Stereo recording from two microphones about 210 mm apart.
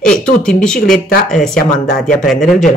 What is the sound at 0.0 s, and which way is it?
Speech, 5° left (ahead or behind).